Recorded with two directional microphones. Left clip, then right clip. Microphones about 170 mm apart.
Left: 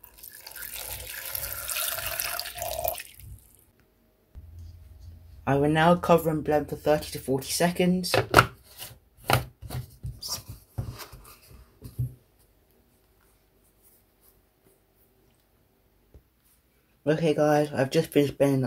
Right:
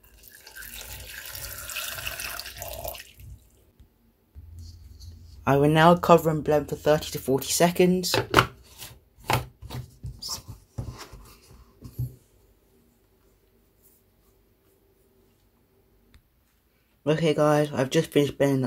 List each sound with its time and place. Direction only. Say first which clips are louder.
0.4 s water: left 1 dB; 10° left (ahead or behind)
5.4 s speech: right 3 dB; 30° right (ahead or behind)
8.1 s speech: left 1 dB; 10° left (ahead or behind)
17.0 s speech: right 1 dB; 20° right (ahead or behind)